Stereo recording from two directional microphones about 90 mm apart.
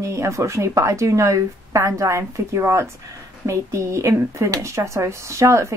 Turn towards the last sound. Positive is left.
turn(degrees=-30)  # may be behind; listen again after turning